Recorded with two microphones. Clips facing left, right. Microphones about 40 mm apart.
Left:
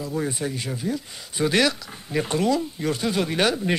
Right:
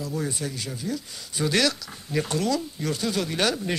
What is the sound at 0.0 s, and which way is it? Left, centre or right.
Speech, left.